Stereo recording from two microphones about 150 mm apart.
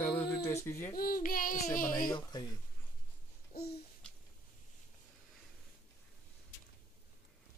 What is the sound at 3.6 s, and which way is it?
Babbling, 90° left.